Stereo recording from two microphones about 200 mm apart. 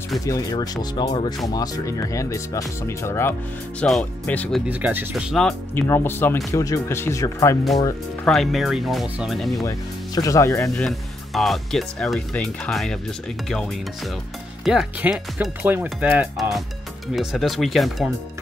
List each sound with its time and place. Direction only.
0.2 s speech: 15° left (ahead or behind)
8.3 s speech: centre (ahead or behind)
9.7 s speech: 15° left (ahead or behind)
10.8 s speech: centre (ahead or behind)
14.6 s speech: centre (ahead or behind)